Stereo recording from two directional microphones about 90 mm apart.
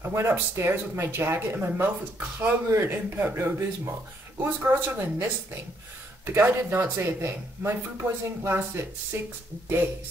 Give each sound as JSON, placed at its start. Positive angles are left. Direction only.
{"t": 0.0, "sound": "speech", "side_deg": -25}